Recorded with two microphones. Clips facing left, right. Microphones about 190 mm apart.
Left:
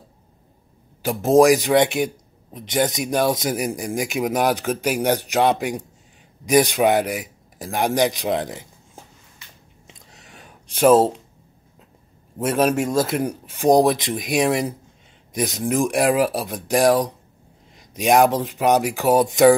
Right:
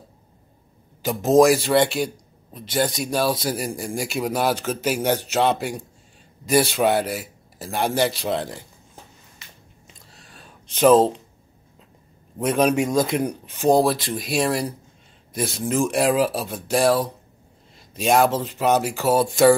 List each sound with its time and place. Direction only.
1.0 s a man's voice: 10° left (ahead or behind)
10.1 s a sound: 20° left (ahead or behind)
12.4 s a man's voice: 5° left (ahead or behind)